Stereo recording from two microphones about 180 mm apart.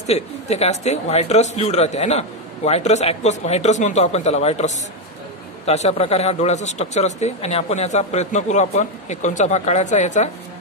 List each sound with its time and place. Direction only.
0.0 s speech: 35° left (ahead or behind)